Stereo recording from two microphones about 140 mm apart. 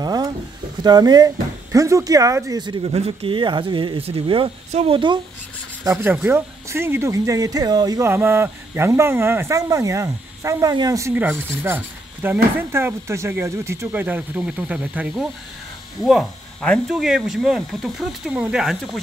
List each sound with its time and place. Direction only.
0.0 s a sound: 30° right (ahead or behind)
0.8 s speech: 30° right (ahead or behind)
2.8 s speech: 45° right (ahead or behind)
5.9 s speech: 15° right (ahead or behind)